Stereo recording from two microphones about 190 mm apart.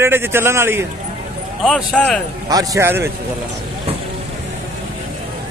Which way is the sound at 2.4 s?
20° right (ahead or behind).